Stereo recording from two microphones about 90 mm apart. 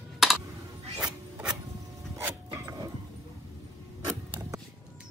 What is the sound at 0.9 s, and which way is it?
Rub, 10° right (ahead or behind).